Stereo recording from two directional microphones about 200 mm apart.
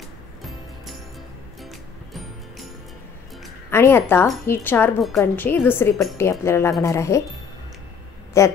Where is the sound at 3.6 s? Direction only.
10° left (ahead or behind).